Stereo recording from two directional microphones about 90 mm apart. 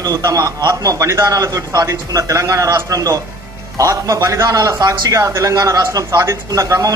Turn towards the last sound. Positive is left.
turn(degrees=-40)  # may be behind; listen again after turning